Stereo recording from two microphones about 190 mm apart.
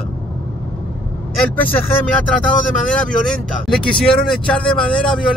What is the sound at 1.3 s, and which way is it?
Speech, 5° left (ahead or behind).